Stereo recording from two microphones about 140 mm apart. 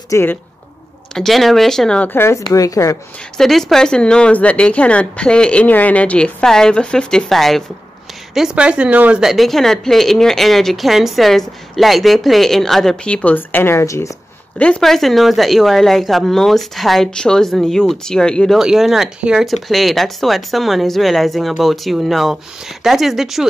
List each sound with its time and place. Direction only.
0.1 s speech: 15° left (ahead or behind)
1.1 s speech: centre (ahead or behind); by 3.0 s 25° left (ahead or behind)
3.3 s speech: centre (ahead or behind); by 14.1 s 20° left (ahead or behind)
14.6 s speech: 5° left (ahead or behind)